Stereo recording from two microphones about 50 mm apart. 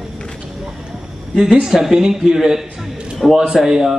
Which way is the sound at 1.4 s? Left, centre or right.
Centre.